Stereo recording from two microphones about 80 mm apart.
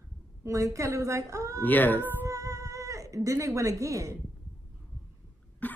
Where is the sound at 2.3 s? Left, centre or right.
Right.